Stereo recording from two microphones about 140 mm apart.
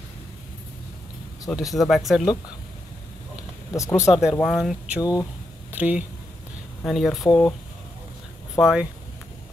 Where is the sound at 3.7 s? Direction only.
25° left (ahead or behind).